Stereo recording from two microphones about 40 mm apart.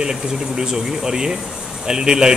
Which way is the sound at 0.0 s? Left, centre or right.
Centre.